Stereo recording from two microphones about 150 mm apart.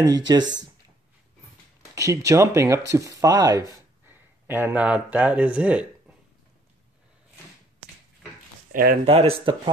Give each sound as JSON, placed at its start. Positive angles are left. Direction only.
{"t": 0.0, "sound": "speech", "side_deg": -25}
{"t": 2.0, "sound": "speech", "side_deg": -20}
{"t": 3.7, "sound": "speech", "side_deg": -15}
{"t": 9.0, "sound": "speech", "side_deg": -40}